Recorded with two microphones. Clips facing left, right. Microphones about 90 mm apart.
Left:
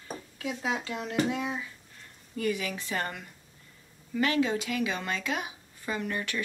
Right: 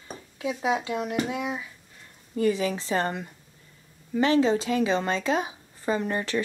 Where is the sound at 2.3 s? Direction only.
30° right (ahead or behind).